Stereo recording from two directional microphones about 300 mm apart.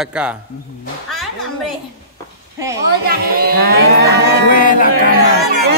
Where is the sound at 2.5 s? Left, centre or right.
Centre.